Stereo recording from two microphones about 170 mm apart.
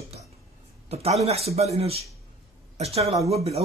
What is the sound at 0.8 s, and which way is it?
Speech, 35° right (ahead or behind).